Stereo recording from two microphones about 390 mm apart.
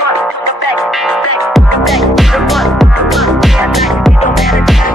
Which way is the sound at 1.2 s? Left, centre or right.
Left.